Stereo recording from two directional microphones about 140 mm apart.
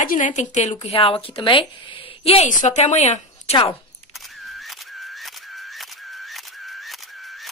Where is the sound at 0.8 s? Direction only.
40° left (ahead or behind).